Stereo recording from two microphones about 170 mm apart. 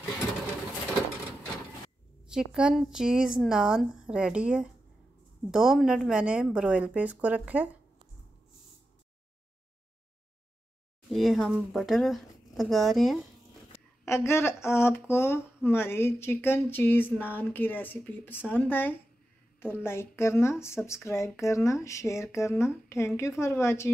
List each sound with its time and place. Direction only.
2.2 s speech: 5° right (ahead or behind)
11.1 s speech: centre (ahead or behind)
14.0 s speech: 15° left (ahead or behind)